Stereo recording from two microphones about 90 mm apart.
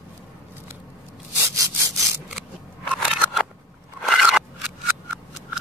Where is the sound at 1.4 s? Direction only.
35° right (ahead or behind).